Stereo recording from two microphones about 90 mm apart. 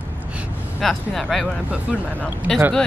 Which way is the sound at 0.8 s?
Centre (ahead or behind).